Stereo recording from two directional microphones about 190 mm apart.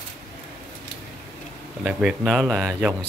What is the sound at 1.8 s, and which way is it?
Speech, 5° right (ahead or behind).